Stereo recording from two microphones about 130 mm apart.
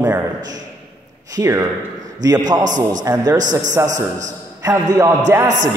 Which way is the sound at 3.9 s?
70° right (ahead or behind).